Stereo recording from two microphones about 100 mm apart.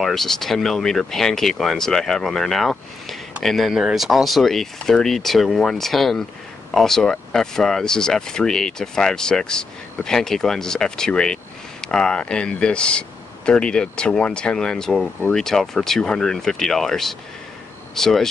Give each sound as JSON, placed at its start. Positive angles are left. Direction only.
{"t": 0.0, "sound": "speech", "side_deg": 5}